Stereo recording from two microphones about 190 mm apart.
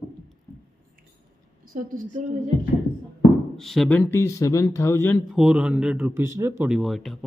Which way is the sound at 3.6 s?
Centre (ahead or behind).